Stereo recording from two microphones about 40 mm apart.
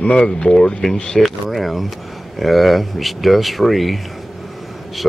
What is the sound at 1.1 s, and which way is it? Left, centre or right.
Speech, centre.